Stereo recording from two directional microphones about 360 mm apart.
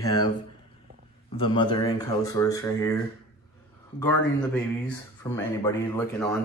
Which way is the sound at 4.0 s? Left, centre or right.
Centre.